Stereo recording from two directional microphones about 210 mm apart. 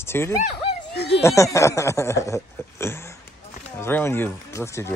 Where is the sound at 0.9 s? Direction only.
50° left (ahead or behind).